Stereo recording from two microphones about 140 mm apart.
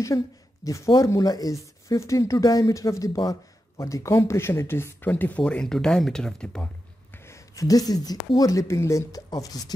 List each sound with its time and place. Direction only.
0.1 s speech: 20° left (ahead or behind); by 6.7 s 5° left (ahead or behind)
7.2 s speech: 20° left (ahead or behind)